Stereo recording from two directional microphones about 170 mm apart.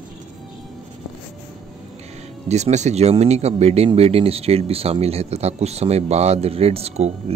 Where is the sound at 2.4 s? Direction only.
40° right (ahead or behind).